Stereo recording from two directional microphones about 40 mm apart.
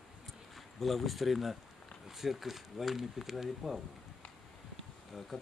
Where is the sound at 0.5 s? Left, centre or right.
Centre.